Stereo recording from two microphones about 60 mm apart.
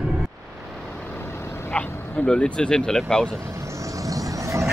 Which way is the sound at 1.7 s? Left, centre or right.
Left.